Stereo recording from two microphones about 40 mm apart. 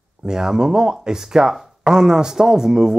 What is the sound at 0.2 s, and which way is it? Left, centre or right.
Speech, centre.